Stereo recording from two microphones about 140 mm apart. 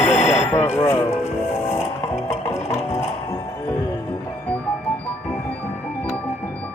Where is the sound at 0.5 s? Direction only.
20° left (ahead or behind).